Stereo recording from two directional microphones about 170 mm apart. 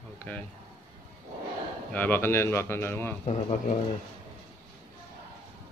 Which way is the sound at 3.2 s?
45° left (ahead or behind).